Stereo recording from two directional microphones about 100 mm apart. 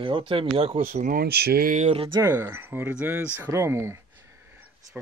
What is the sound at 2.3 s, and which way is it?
Speech, 20° right (ahead or behind).